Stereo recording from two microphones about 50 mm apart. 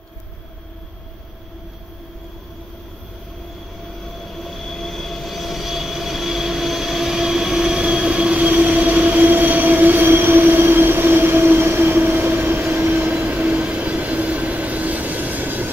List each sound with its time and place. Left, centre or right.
4.3 s train: centre; by 12.6 s right
12.7 s vehicle: right
13.5 s train: right